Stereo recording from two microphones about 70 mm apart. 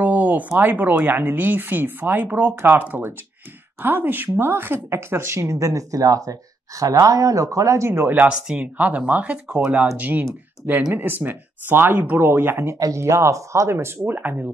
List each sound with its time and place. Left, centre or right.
0.0 s speech: right
8.1 s speech: right
12.7 s speech: right